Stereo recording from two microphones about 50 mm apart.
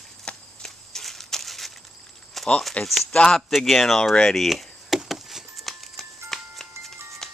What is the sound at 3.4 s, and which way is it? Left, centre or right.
Speech, centre.